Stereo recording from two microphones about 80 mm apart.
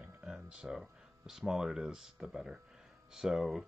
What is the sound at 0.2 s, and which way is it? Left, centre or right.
Speech, centre.